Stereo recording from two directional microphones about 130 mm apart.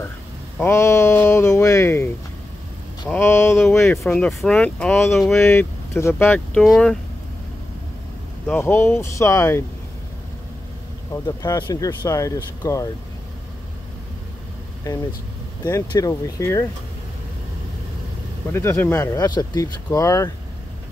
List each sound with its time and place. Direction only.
0.6 s speech: 20° left (ahead or behind)
3.2 s speech: 20° left (ahead or behind)
4.0 s speech: 5° left (ahead or behind)
4.9 s speech: 20° left (ahead or behind)
5.2 s speech: 5° left (ahead or behind)
5.9 s speech: 20° left (ahead or behind)
6.6 s speech: 5° left (ahead or behind)
8.5 s speech: 15° left (ahead or behind)
11.2 s speech: 30° left (ahead or behind)
15.6 s speech: 25° left (ahead or behind)
18.5 s speech: 20° left (ahead or behind)